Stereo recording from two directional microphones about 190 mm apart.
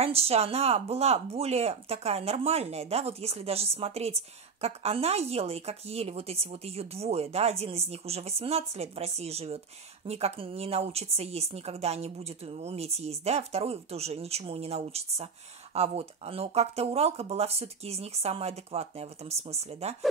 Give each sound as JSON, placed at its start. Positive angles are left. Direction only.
{"t": 0.0, "sound": "speech", "side_deg": -30}